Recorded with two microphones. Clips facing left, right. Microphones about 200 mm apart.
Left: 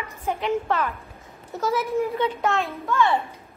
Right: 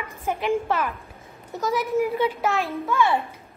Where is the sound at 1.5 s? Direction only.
Centre (ahead or behind).